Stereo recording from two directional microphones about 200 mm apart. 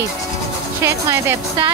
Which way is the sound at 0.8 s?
15° right (ahead or behind).